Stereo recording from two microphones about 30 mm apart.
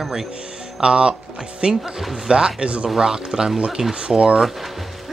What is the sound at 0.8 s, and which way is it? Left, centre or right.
Speech, right.